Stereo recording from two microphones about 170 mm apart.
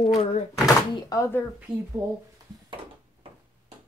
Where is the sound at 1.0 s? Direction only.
20° left (ahead or behind).